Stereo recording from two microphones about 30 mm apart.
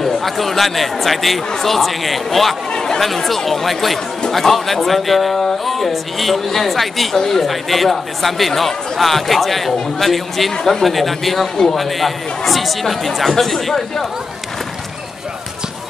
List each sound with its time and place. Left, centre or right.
0.0 s speech: centre
2.7 s chatter: left
3.3 s speech: centre
7.2 s speech: centre
7.4 s speech: centre